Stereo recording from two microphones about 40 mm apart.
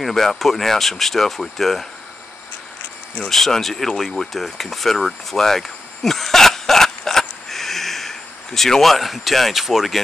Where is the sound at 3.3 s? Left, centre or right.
Centre.